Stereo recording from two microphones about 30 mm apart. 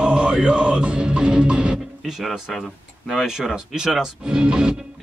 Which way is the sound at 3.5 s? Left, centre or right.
Right.